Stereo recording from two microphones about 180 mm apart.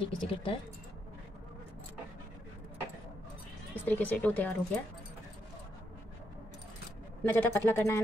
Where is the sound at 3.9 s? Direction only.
10° left (ahead or behind).